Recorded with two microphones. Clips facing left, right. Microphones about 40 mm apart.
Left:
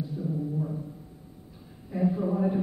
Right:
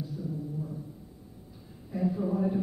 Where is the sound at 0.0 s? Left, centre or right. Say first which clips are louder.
Left 5 dB; left.